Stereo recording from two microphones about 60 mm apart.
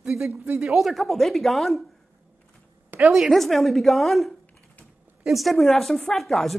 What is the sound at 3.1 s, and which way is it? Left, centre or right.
A woman's voice, centre.